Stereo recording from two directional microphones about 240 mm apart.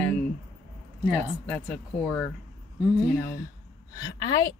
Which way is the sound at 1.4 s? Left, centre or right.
Centre.